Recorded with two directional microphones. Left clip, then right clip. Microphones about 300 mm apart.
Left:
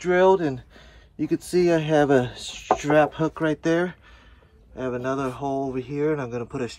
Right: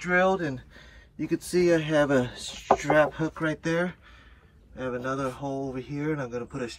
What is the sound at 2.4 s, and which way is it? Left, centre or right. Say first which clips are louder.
Speech: left 3 dB; centre.